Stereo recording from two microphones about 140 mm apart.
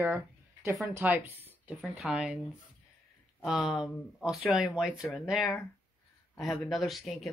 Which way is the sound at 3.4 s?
Centre (ahead or behind).